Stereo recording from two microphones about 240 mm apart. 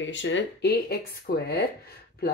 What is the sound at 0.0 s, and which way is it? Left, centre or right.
Speech, left.